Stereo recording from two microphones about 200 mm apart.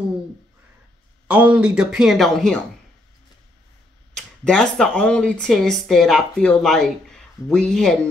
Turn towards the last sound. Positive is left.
turn(degrees=5)  # may be behind; listen again after turning